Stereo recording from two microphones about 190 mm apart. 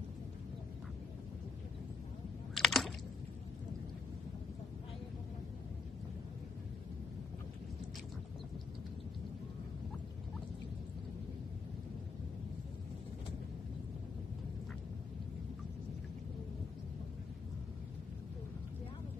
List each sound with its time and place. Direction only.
2.5 s typing: centre (ahead or behind)